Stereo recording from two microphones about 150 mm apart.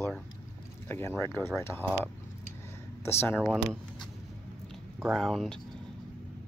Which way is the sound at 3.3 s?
Centre (ahead or behind).